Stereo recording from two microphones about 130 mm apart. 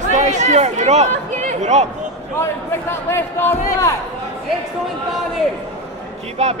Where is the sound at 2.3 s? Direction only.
20° left (ahead or behind).